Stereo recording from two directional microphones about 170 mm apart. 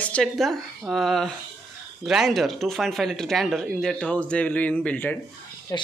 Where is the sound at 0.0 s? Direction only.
5° left (ahead or behind).